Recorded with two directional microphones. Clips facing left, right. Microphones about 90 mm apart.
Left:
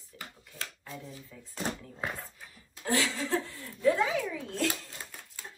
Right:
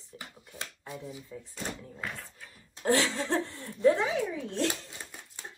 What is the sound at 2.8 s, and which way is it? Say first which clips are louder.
Speech: right 3 dB; 35° right (ahead or behind).